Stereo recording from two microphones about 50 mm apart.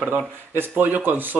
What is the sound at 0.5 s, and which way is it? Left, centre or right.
Speech, right.